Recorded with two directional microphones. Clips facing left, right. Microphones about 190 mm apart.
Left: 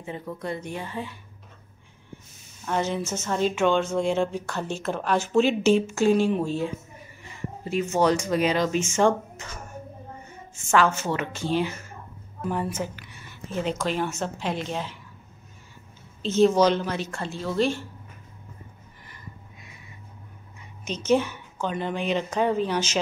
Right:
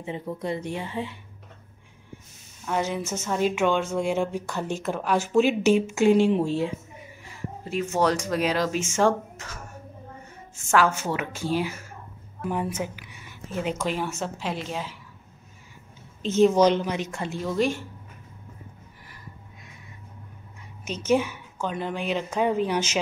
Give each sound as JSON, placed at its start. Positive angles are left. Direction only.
{"t": 0.0, "sound": "speech", "side_deg": -25}
{"t": 2.6, "sound": "speech", "side_deg": -5}
{"t": 7.2, "sound": "speech", "side_deg": 0}
{"t": 10.7, "sound": "speech", "side_deg": -10}
{"t": 16.2, "sound": "speech", "side_deg": -10}
{"t": 20.8, "sound": "speech", "side_deg": -10}